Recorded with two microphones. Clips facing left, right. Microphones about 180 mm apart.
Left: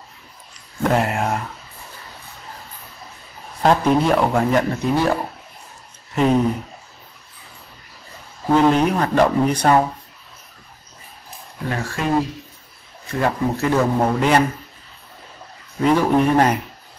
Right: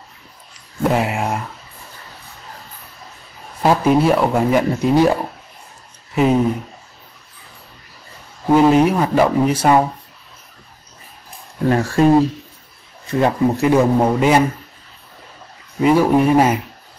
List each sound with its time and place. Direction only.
0.8 s speech: 5° right (ahead or behind)
3.6 s speech: 5° right (ahead or behind)
6.1 s speech: 5° right (ahead or behind)
8.5 s speech: 10° right (ahead or behind)
12.0 s speech: 35° right (ahead or behind)
13.2 s speech: 15° right (ahead or behind)
15.8 s speech: 10° right (ahead or behind)